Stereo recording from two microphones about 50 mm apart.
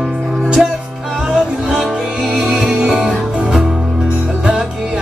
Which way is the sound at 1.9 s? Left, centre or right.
Centre.